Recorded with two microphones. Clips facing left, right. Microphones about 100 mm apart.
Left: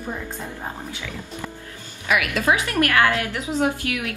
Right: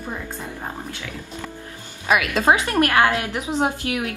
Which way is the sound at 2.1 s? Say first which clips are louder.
Right 3 dB; 25° right (ahead or behind).